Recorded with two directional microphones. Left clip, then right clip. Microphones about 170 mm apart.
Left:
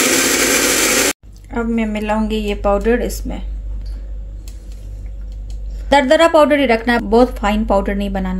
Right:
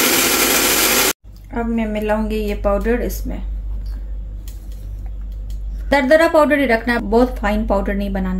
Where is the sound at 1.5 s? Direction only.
20° left (ahead or behind).